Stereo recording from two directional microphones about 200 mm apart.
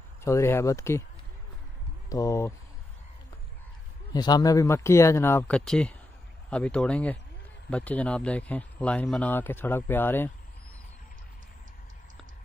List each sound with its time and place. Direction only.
0.2 s speech: 15° left (ahead or behind)
2.0 s speech: 15° left (ahead or behind)
4.1 s speech: 20° left (ahead or behind)